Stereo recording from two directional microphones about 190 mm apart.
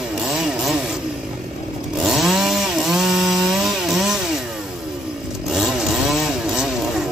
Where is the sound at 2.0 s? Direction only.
Centre (ahead or behind).